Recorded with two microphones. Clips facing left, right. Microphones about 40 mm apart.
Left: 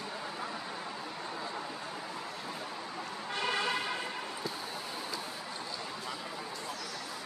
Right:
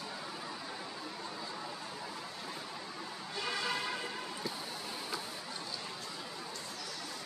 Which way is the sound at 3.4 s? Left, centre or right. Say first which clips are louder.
Left 5 dB; left.